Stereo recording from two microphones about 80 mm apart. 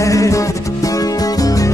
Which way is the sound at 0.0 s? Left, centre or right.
Left.